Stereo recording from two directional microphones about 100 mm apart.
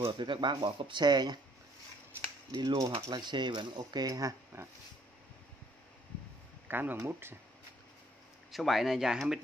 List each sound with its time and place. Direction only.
0.2 s speech: 50° right (ahead or behind)
2.5 s speech: 45° right (ahead or behind)
6.7 s speech: 20° right (ahead or behind)
8.5 s speech: centre (ahead or behind)